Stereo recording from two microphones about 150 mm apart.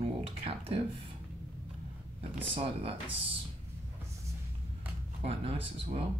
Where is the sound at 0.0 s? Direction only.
40° right (ahead or behind).